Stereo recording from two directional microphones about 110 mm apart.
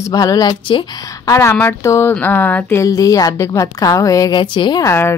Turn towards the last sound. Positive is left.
turn(degrees=25)  # may be behind; listen again after turning